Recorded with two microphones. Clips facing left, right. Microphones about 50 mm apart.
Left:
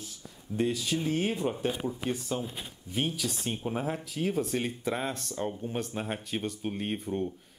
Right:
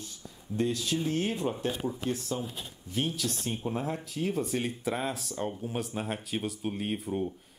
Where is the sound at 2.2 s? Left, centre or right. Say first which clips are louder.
Left 1 dB; left.